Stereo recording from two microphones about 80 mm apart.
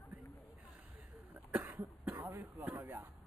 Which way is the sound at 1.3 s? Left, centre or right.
Right.